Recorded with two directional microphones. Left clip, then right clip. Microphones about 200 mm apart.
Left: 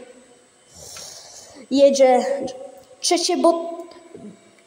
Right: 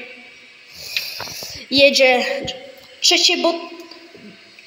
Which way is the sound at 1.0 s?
20° left (ahead or behind).